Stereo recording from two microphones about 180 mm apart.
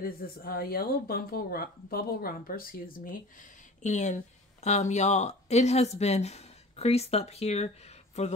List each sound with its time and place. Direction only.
0.0 s speech: 55° left (ahead or behind)
3.8 s speech: 40° left (ahead or behind)